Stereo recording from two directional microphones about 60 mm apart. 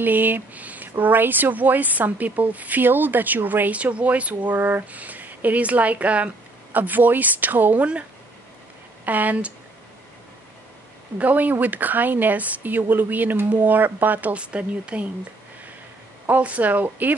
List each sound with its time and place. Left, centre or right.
0.0 s speech: right
9.0 s speech: right
11.1 s speech: right
16.3 s speech: right